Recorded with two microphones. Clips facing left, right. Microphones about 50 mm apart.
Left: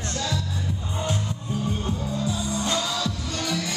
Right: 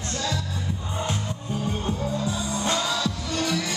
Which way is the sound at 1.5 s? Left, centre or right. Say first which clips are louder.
Even; centre.